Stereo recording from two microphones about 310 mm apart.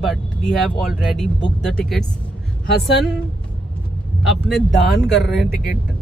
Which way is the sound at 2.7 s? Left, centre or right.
Left.